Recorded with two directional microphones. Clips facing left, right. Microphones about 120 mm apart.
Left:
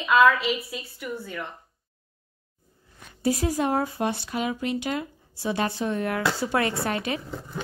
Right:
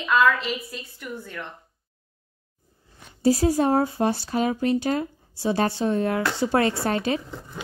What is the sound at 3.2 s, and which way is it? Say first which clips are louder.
Speech: right 5 dB; 30° right (ahead or behind).